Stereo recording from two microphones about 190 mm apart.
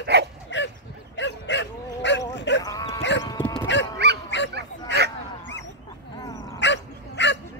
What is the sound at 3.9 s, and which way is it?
Dog, 60° right (ahead or behind).